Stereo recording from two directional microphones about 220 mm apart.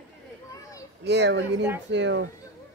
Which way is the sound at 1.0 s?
50° right (ahead or behind).